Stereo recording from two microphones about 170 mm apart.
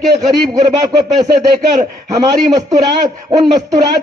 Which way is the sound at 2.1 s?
25° right (ahead or behind).